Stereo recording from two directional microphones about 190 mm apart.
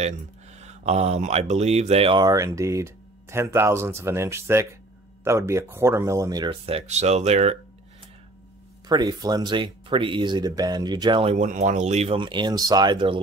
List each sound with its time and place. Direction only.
0.0 s speech: 35° right (ahead or behind)
8.8 s speech: 20° right (ahead or behind)